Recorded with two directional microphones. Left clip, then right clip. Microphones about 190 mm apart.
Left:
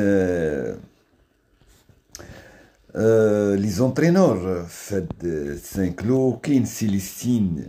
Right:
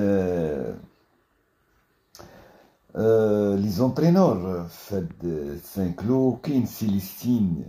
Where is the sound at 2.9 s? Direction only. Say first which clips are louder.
Left 3 dB; 25° left (ahead or behind).